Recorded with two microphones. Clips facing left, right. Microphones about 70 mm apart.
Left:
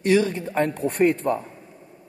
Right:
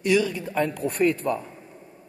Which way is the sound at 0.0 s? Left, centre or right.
Left.